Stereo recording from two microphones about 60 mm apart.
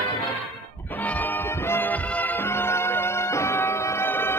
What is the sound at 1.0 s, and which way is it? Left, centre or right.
Music, left.